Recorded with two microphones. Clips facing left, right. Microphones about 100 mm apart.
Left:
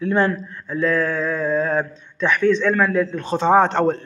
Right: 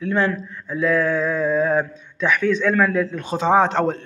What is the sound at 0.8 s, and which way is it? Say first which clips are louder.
A man's voice: right 1 dB; 10° right (ahead or behind).